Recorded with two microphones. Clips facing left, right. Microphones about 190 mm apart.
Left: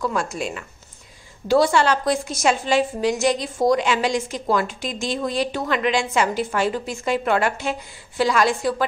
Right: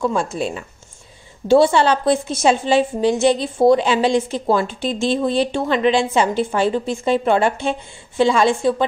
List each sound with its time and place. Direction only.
0.0 s a woman's voice: 30° right (ahead or behind)